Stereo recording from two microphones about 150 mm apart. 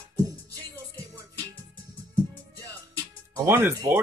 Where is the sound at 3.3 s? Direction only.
15° right (ahead or behind).